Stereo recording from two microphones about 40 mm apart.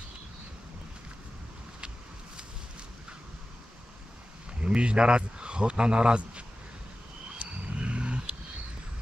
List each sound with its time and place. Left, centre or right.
4.6 s speech: right
7.3 s wild animals: right